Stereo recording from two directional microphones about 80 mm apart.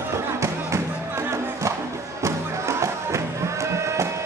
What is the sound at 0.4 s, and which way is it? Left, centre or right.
Music, right.